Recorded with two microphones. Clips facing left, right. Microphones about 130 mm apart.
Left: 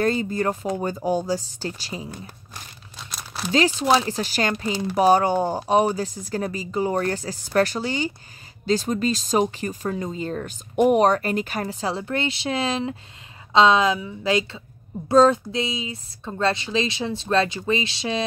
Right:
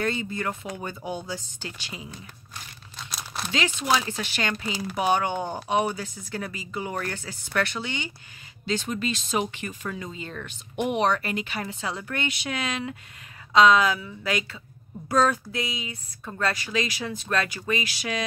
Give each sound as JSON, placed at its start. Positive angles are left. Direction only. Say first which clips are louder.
{"t": 0.0, "sound": "speech", "louder": "left 6 dB", "side_deg": 40}
{"t": 3.1, "sound": "crumpling", "louder": "left 3 dB", "side_deg": 0}
{"t": 3.5, "sound": "speech", "louder": "left 6 dB", "side_deg": 35}